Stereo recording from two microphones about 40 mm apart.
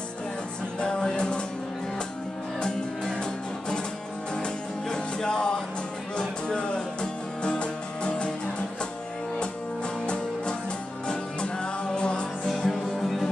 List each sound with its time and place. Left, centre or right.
0.7 s music: left
4.4 s music: centre
10.0 s music: left
12.4 s music: centre